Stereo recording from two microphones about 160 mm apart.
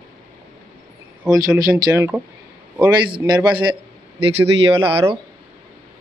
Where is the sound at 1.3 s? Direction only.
20° right (ahead or behind).